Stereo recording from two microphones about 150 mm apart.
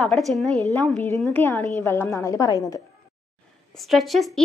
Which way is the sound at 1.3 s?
15° left (ahead or behind).